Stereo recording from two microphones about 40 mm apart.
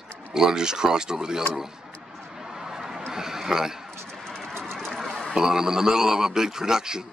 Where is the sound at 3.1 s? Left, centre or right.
Centre.